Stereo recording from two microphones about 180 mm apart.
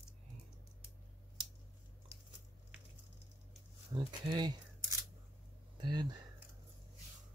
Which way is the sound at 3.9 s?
25° right (ahead or behind).